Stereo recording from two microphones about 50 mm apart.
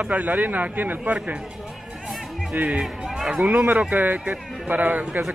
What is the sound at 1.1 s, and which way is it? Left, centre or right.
Speech, right.